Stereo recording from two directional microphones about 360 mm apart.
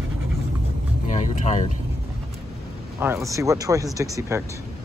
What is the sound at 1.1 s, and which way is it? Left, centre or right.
Speech, centre.